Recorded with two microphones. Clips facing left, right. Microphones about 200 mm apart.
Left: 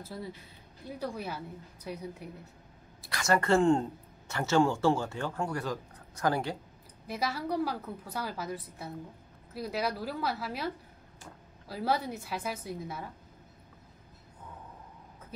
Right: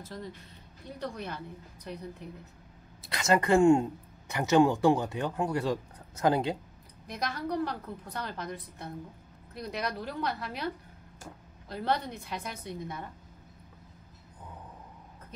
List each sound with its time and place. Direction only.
0.1 s speech: 10° left (ahead or behind)
3.0 s a woman's voice: 20° right (ahead or behind)
7.1 s a woman's voice: 5° left (ahead or behind)
11.7 s a woman's voice: 5° left (ahead or behind)